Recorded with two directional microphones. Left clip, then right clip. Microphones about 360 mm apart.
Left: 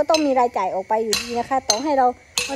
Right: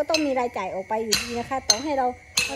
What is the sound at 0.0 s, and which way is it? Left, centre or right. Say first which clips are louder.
A woman's voice: left 6 dB; centre.